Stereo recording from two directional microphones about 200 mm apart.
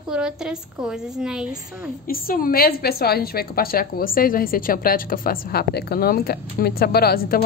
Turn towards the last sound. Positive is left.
turn(degrees=50)  # may be behind; listen again after turning